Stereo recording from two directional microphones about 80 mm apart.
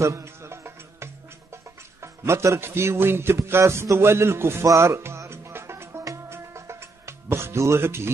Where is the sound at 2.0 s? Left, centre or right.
Right.